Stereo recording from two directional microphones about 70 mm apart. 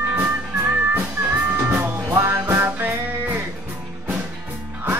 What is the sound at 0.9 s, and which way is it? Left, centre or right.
Music, right.